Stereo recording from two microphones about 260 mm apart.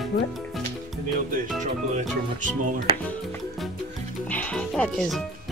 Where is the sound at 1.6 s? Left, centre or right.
Right.